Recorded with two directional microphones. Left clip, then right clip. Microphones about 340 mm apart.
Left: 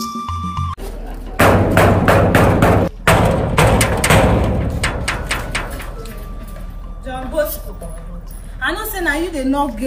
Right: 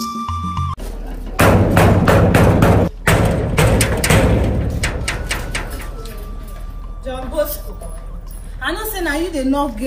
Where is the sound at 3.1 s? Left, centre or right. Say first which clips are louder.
Left 4 dB; centre.